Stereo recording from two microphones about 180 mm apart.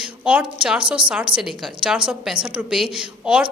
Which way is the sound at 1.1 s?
5° right (ahead or behind).